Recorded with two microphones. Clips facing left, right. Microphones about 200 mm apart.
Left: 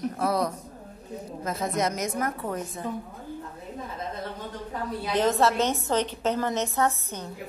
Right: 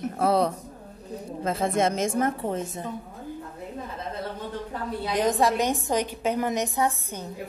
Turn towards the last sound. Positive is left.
turn(degrees=-10)  # may be behind; listen again after turning